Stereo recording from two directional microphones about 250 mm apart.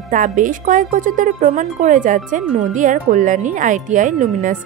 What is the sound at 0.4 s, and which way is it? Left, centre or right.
Speech, right.